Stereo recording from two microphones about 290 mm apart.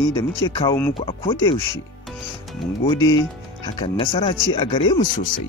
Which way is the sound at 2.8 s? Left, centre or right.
Centre.